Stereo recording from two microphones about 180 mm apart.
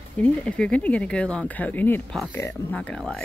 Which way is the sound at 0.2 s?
5° left (ahead or behind).